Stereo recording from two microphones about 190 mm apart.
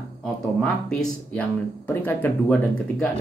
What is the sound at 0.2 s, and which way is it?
Speech, 5° left (ahead or behind).